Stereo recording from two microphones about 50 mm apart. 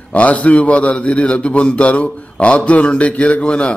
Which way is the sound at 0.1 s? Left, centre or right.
Left.